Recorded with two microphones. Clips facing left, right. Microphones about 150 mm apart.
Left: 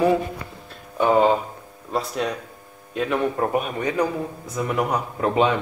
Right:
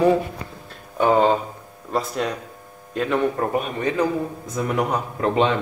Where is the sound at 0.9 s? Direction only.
Centre (ahead or behind).